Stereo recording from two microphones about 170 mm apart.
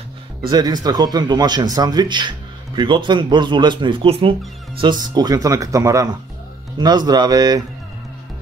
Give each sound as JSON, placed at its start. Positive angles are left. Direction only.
{"t": 0.5, "sound": "speech", "side_deg": -25}